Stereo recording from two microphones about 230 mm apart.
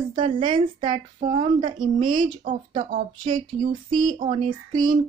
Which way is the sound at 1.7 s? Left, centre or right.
Right.